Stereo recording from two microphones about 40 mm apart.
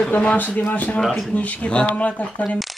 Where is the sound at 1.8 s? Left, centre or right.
Left.